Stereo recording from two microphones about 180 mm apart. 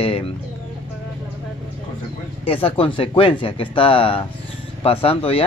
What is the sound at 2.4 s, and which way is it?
Speech, 30° left (ahead or behind).